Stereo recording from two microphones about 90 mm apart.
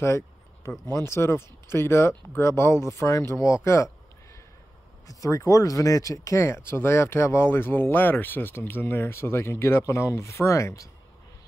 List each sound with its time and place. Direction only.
0.9 s speech: 30° left (ahead or behind)
5.0 s speech: 40° left (ahead or behind)